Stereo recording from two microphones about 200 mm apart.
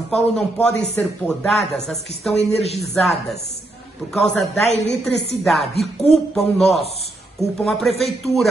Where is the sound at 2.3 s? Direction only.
30° left (ahead or behind).